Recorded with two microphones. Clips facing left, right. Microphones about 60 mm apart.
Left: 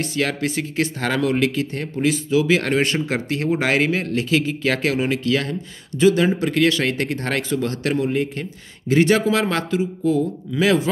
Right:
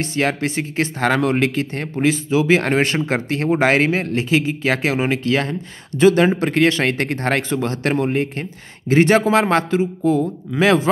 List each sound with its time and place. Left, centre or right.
0.0 s speech: right
5.9 s speech: right